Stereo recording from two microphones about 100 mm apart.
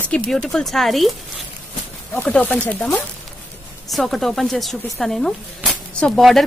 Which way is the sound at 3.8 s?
Centre (ahead or behind).